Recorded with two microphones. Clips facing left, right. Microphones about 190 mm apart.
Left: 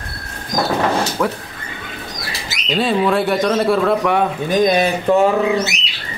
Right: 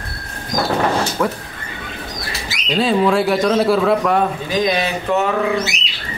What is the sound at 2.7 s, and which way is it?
A man's voice, centre (ahead or behind).